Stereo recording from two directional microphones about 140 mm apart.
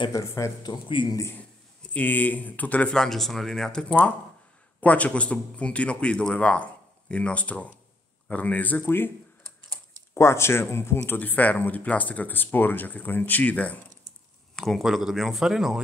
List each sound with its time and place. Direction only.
0.0 s speech: 25° left (ahead or behind)
2.0 s speech: 10° left (ahead or behind)
10.1 s speech: 20° left (ahead or behind); by 15.8 s 5° right (ahead or behind)